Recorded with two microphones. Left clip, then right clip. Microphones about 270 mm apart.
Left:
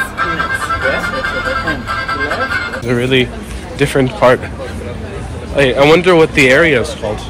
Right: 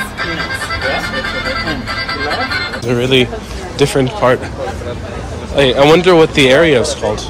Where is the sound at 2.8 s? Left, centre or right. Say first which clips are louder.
Right 2 dB; centre.